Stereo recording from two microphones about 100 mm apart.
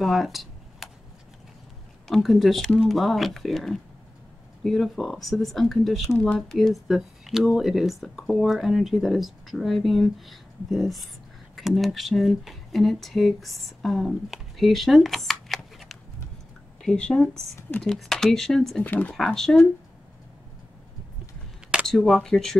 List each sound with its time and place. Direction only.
0.0 s a sound: centre (ahead or behind)
2.0 s speech: centre (ahead or behind)
6.1 s speech: 15° left (ahead or behind)
18.8 s speech: 15° left (ahead or behind)
19.1 s speech: 5° left (ahead or behind)
21.8 s speech: 5° left (ahead or behind)